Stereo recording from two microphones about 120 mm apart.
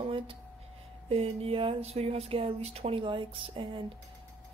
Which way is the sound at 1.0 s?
60° right (ahead or behind).